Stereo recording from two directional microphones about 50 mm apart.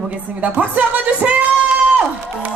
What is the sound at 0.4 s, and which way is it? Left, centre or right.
Speech, right.